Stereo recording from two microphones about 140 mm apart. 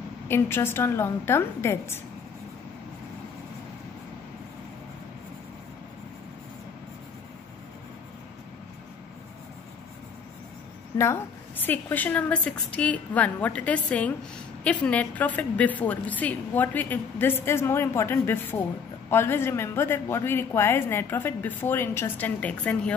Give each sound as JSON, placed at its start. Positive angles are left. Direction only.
{"t": 0.3, "sound": "a woman's voice", "side_deg": 15}
{"t": 11.6, "sound": "a woman's voice", "side_deg": 10}